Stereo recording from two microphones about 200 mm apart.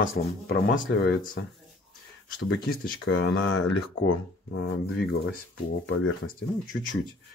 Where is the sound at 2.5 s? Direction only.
45° left (ahead or behind).